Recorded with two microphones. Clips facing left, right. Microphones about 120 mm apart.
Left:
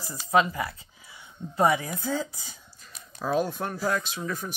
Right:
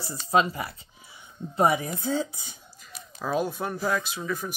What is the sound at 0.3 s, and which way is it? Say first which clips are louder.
Speech: even; 25° right (ahead or behind).